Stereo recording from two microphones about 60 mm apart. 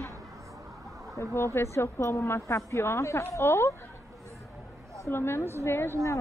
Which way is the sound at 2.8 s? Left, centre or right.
Left.